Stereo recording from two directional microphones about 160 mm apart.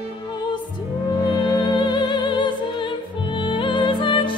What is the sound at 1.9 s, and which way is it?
Music, 30° left (ahead or behind).